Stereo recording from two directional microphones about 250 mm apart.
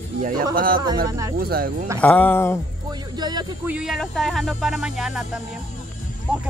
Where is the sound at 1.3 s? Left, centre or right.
Right.